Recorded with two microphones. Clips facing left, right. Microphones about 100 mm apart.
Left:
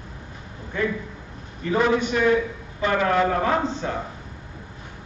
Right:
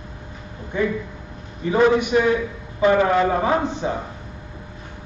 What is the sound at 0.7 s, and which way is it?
A man's voice, 20° right (ahead or behind).